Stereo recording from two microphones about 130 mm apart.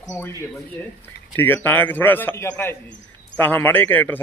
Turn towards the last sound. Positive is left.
turn(degrees=15)  # may be behind; listen again after turning